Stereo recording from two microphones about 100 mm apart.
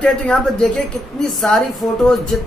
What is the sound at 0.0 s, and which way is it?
Speech, 5° left (ahead or behind).